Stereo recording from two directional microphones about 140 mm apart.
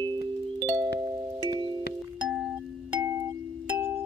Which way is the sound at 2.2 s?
5° right (ahead or behind).